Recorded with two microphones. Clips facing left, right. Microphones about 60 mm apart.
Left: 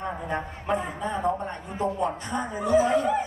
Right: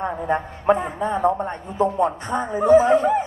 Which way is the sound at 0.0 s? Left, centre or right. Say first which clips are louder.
Right 7 dB; right.